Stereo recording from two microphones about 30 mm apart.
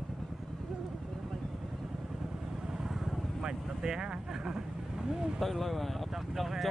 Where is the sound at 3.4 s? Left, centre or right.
Right.